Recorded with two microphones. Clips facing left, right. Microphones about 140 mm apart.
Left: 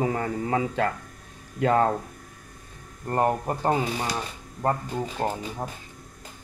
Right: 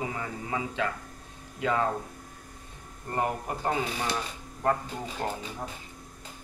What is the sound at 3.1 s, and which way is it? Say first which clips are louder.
Speech: left 6 dB; 40° left (ahead or behind).